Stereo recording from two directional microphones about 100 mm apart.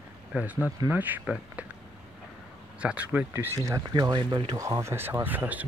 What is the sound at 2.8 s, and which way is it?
Speech, 15° right (ahead or behind).